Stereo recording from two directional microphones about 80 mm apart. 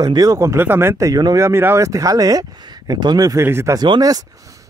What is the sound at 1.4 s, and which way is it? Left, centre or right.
Speech, right.